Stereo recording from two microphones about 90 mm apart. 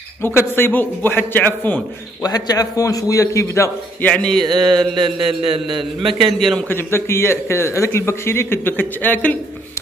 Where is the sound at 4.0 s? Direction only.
15° left (ahead or behind).